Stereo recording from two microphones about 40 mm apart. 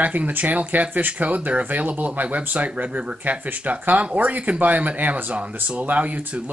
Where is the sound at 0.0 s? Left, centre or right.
Right.